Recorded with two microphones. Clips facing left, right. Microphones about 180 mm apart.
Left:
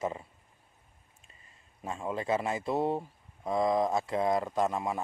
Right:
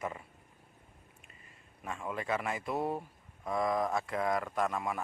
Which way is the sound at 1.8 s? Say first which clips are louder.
Left 4 dB; 30° left (ahead or behind).